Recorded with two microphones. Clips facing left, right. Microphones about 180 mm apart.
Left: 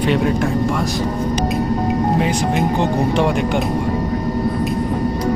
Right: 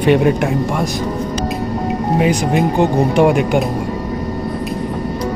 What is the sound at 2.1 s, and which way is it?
Speech, 10° right (ahead or behind).